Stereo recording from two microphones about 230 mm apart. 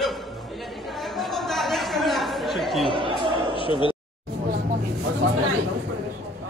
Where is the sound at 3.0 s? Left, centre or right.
Right.